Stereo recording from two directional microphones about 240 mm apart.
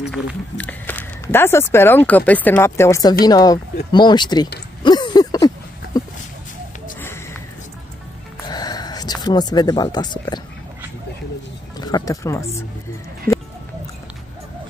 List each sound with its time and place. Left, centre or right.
0.1 s speech: centre
4.8 s a sound: centre
8.5 s speech: centre
11.8 s speech: centre